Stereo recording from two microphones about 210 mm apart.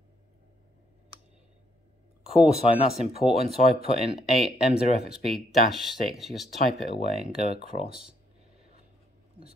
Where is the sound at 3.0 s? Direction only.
30° right (ahead or behind).